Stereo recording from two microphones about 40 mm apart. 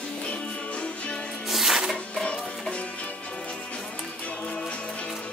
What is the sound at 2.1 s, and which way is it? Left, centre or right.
Music, left.